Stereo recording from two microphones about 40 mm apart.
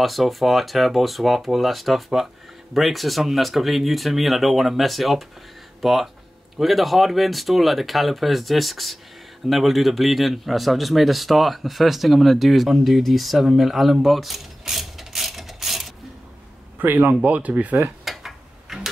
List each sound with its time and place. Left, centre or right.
0.0 s a man's voice: centre
14.7 s mechanisms: centre
16.7 s speech: right
17.1 s speech: right
18.0 s a sound: centre